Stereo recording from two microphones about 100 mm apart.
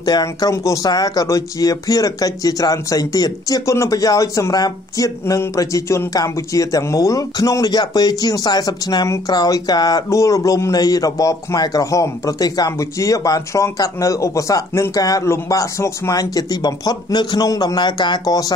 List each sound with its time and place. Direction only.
0.0 s a man's voice: 40° left (ahead or behind)
10.0 s a man's voice: 30° left (ahead or behind)